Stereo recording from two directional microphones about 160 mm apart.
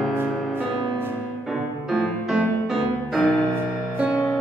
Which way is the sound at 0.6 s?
15° right (ahead or behind).